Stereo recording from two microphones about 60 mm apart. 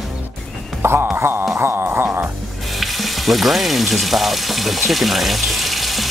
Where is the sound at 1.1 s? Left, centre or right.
Right.